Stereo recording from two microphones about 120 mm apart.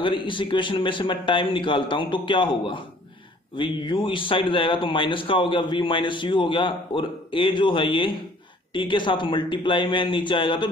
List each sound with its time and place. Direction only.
0.0 s speech: 45° left (ahead or behind)